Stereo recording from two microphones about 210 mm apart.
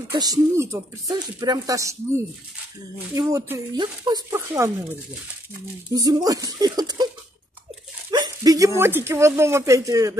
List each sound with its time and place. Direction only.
0.1 s speech: 20° right (ahead or behind)
5.9 s speech: 15° right (ahead or behind)
8.1 s speech: 15° right (ahead or behind)